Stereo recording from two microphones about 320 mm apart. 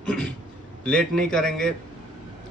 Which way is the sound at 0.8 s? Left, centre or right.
Centre.